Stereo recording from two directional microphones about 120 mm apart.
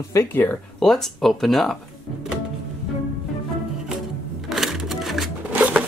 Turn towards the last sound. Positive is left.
turn(degrees=-15)  # may be behind; listen again after turning